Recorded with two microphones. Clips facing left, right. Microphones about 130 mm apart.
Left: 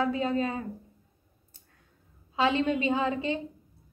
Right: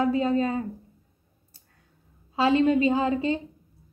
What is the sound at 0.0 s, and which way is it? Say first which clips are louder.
Speech: right 4 dB; 35° right (ahead or behind).